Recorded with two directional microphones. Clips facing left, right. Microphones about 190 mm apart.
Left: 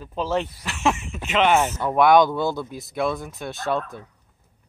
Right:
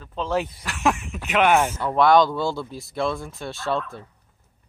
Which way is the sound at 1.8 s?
15° left (ahead or behind).